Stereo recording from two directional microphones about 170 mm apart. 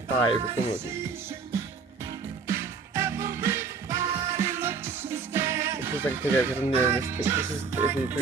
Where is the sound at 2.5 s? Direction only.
15° right (ahead or behind).